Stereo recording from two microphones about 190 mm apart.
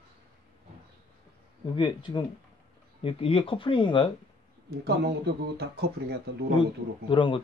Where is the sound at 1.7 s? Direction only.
25° left (ahead or behind).